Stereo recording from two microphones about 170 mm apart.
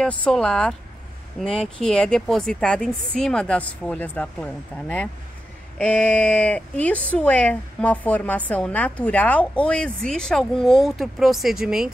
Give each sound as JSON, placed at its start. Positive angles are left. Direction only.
{"t": 0.0, "sound": "a woman's voice", "side_deg": 5}